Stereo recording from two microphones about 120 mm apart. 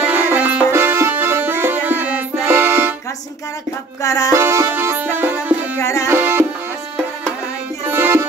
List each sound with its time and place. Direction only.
0.0 s music: 15° right (ahead or behind)
4.0 s music: 30° left (ahead or behind)
4.3 s music: 20° right (ahead or behind)
5.8 s music: 25° left (ahead or behind)
6.0 s music: 20° right (ahead or behind)
7.8 s music: 15° right (ahead or behind)